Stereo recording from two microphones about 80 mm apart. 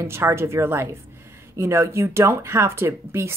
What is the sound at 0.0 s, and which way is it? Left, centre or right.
Speech, right.